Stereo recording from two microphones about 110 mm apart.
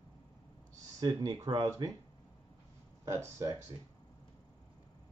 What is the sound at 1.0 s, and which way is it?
Speech, 35° right (ahead or behind).